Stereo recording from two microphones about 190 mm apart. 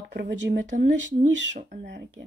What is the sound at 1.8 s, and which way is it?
Speech, 65° right (ahead or behind).